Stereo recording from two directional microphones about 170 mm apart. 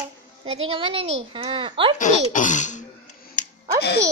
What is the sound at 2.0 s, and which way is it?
Speech, 50° left (ahead or behind).